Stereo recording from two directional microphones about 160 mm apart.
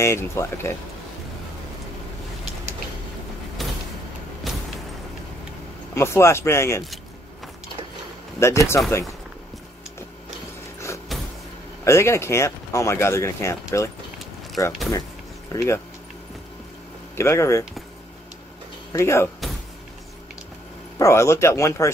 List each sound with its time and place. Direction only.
0.0 s speech: 15° left (ahead or behind)
3.6 s vehicle: centre (ahead or behind)
5.9 s speech: 15° left (ahead or behind)
8.4 s speech: 15° left (ahead or behind)
11.8 s speech: 15° left (ahead or behind)
17.2 s speech: 20° left (ahead or behind)
18.9 s speech: 15° left (ahead or behind)
21.0 s speech: 15° left (ahead or behind)